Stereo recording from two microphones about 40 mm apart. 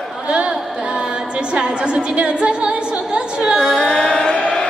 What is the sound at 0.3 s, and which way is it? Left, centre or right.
A woman's voice, right.